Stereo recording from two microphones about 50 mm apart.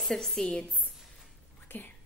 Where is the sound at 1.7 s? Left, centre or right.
Left.